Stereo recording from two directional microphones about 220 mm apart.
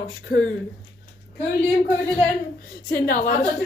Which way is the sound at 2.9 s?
40° left (ahead or behind).